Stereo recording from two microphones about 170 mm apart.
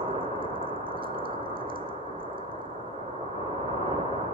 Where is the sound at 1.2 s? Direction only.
60° right (ahead or behind).